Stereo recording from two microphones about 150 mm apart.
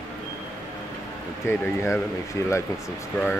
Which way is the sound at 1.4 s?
15° left (ahead or behind).